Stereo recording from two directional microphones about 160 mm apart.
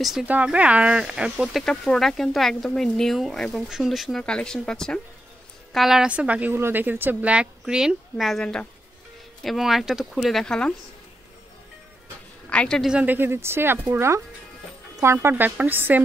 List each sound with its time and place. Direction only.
0.0 s a woman's voice: 5° right (ahead or behind)
12.4 s a woman's voice: 5° left (ahead or behind); by 16.0 s 10° right (ahead or behind)